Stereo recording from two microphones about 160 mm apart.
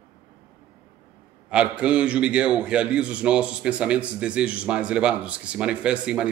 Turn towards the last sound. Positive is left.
turn(degrees=-5)  # may be behind; listen again after turning